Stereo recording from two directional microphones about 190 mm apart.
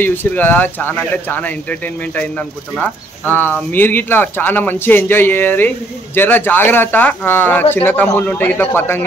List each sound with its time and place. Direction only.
0.0 s speech: 10° left (ahead or behind)